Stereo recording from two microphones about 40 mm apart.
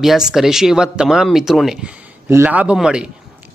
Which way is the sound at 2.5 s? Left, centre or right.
Right.